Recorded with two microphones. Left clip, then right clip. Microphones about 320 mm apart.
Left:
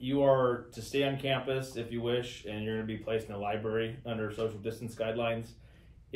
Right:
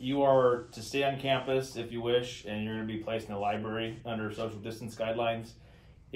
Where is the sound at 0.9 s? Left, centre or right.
Centre.